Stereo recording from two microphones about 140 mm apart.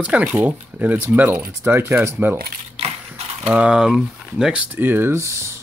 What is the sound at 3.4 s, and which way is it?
Speech, 10° right (ahead or behind).